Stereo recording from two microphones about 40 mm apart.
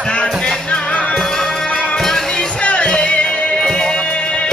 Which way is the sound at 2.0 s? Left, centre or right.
Centre.